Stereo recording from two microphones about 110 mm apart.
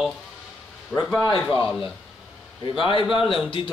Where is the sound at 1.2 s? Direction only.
50° left (ahead or behind).